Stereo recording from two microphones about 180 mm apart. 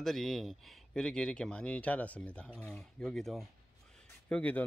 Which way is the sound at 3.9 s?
5° left (ahead or behind).